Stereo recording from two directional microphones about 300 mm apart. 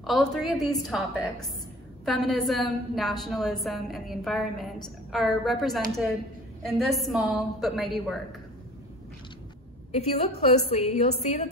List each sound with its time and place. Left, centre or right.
0.0 s a woman's voice: centre
9.9 s a woman's voice: left